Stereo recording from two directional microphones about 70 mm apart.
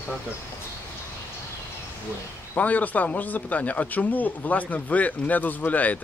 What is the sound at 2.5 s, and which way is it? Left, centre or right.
Speech, left.